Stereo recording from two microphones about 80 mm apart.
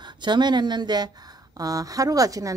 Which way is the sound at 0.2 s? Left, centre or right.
Right.